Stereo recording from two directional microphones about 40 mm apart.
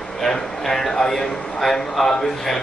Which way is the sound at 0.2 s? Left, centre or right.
Centre.